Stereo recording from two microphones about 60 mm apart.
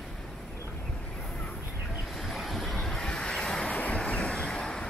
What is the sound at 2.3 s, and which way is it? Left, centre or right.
Vehicle, centre.